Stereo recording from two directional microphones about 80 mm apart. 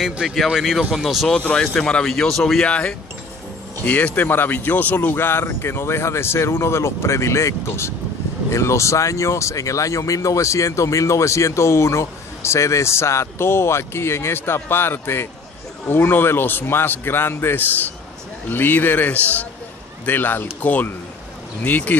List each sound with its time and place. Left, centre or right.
0.0 s a man's voice: centre; by 21.9 s left